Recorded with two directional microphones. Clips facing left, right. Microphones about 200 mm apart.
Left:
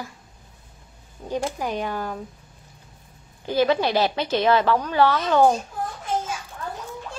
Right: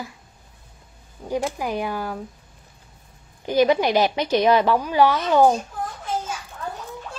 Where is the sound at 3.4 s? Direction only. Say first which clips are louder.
Right 2 dB; 15° right (ahead or behind).